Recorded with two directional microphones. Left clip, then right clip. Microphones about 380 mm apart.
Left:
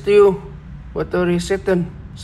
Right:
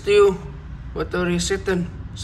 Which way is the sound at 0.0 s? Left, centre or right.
Centre.